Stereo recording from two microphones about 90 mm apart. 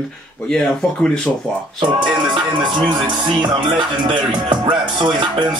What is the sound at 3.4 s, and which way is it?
Music, 60° right (ahead or behind).